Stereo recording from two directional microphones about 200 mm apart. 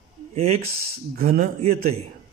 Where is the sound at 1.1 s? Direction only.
45° right (ahead or behind).